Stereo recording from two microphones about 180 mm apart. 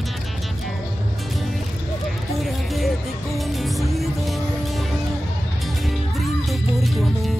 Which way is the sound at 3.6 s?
Centre (ahead or behind).